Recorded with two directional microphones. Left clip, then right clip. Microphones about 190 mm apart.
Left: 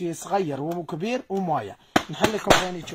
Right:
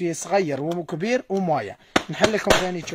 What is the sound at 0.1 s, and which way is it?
Speech, 30° right (ahead or behind).